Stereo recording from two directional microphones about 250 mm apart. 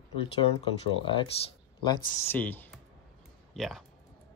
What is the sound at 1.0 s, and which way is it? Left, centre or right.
Speech, left.